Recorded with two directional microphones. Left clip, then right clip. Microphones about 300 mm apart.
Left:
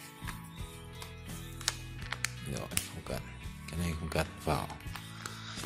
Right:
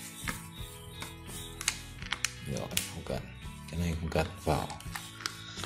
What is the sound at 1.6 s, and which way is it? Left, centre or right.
Music, centre.